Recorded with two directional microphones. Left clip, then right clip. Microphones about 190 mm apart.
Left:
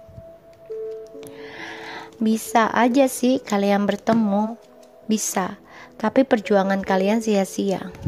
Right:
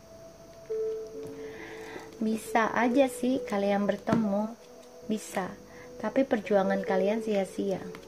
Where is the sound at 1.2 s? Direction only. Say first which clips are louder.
Left 5 dB; 30° left (ahead or behind).